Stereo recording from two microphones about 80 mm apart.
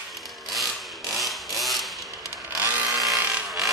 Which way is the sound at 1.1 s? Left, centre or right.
Centre.